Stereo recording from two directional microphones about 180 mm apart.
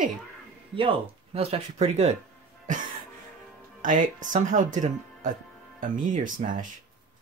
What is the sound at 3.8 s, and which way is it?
Speech, 45° right (ahead or behind).